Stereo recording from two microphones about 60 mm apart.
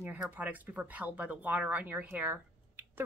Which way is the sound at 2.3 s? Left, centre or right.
Right.